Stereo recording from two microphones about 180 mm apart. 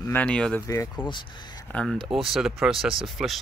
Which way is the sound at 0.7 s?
15° left (ahead or behind).